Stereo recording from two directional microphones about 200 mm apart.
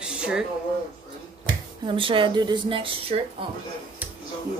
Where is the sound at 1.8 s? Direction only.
25° right (ahead or behind).